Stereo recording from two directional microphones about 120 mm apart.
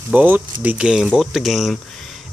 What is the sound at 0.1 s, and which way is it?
Speech, 15° right (ahead or behind).